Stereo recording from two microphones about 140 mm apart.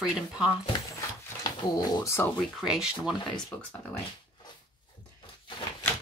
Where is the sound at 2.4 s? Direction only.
5° right (ahead or behind).